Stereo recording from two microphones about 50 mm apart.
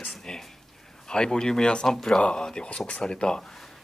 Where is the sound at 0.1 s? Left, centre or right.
Centre.